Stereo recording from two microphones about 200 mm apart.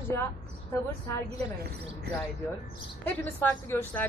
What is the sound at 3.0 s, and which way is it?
Speech, 10° left (ahead or behind).